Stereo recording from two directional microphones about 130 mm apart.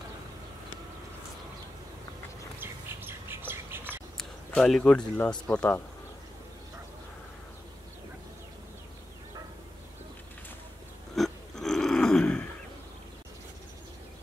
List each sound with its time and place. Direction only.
2.6 s squawk: 15° right (ahead or behind)
4.2 s speech: 5° left (ahead or behind)
11.1 s a sound: centre (ahead or behind)